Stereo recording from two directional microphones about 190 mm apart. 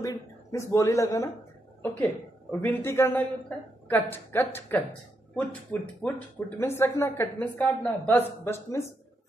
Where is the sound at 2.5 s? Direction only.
10° left (ahead or behind).